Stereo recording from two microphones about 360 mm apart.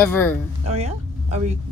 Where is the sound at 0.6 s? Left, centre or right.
Centre.